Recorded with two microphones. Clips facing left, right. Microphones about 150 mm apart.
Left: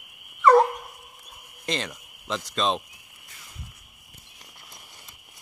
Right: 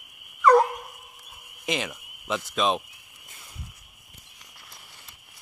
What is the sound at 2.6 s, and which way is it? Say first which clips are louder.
Speech: right 1 dB; 10° right (ahead or behind).